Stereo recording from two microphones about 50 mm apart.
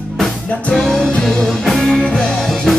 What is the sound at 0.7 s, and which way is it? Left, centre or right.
Music, centre.